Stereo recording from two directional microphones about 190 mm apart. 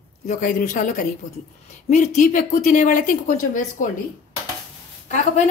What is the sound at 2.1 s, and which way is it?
A woman's voice, 40° left (ahead or behind).